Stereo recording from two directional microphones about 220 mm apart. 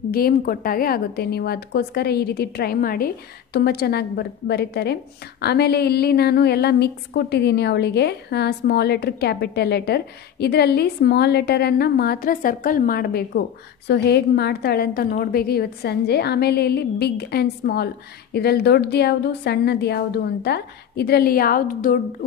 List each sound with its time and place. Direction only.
0.1 s a woman's voice: 40° left (ahead or behind)